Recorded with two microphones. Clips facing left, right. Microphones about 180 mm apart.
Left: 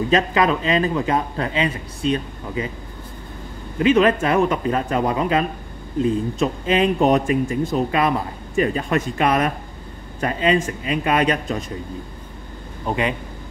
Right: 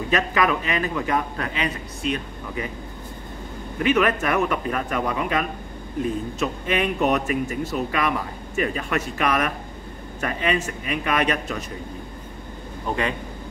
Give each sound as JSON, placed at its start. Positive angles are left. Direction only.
{"t": 0.1, "sound": "a man's voice", "side_deg": 30}
{"t": 3.8, "sound": "a man's voice", "side_deg": 30}